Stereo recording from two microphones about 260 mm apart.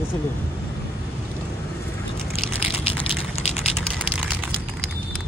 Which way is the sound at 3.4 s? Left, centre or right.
Left.